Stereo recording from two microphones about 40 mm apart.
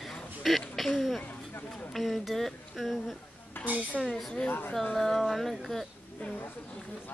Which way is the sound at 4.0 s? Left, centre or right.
Centre.